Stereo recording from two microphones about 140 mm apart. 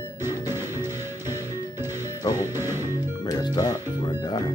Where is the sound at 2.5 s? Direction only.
20° right (ahead or behind).